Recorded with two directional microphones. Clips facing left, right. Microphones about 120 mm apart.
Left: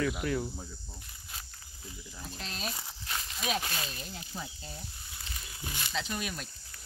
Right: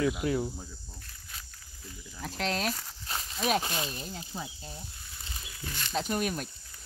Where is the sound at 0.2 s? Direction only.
20° right (ahead or behind).